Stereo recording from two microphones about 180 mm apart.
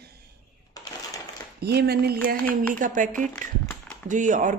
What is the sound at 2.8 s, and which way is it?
Speech, 45° right (ahead or behind).